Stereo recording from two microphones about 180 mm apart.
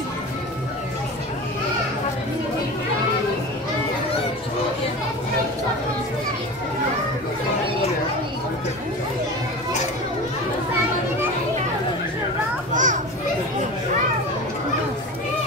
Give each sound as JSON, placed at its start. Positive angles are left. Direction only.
{"t": 12.7, "sound": "children playing", "side_deg": -45}